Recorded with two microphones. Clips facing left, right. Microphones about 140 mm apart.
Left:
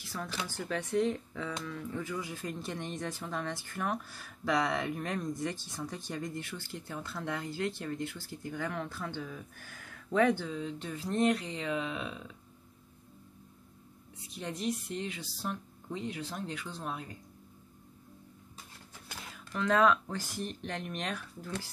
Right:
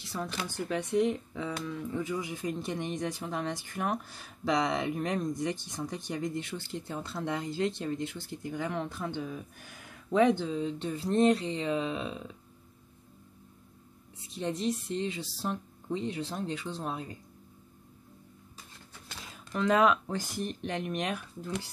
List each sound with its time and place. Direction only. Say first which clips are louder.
0.1 s speech: right 3 dB; 15° right (ahead or behind)
14.3 s speech: right 4 dB; 25° right (ahead or behind)
19.3 s speech: right 2 dB; 20° right (ahead or behind)